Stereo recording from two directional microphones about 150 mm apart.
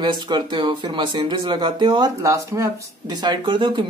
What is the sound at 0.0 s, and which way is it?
Speech, 30° right (ahead or behind).